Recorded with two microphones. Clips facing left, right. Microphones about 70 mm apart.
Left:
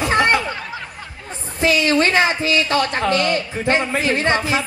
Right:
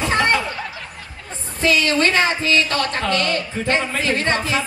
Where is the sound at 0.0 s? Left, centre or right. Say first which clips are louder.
Left 2 dB; centre.